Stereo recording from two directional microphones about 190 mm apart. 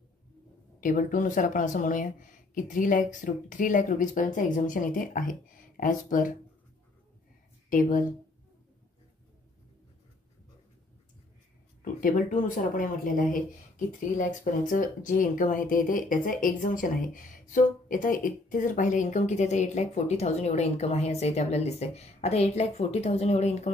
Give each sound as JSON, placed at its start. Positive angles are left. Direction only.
{"t": 0.7, "sound": "speech", "side_deg": 45}
{"t": 11.8, "sound": "speech", "side_deg": 45}